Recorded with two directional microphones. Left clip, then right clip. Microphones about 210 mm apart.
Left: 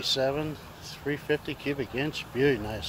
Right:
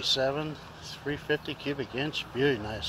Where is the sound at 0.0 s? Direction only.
15° left (ahead or behind).